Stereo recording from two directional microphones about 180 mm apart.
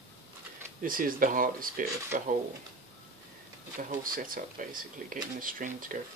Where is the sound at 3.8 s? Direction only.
50° right (ahead or behind).